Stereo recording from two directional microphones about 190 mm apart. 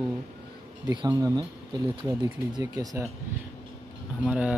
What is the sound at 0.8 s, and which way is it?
Speech, 20° right (ahead or behind).